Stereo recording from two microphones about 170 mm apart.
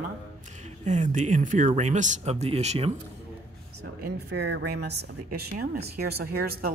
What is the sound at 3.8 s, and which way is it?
Speech, 75° right (ahead or behind).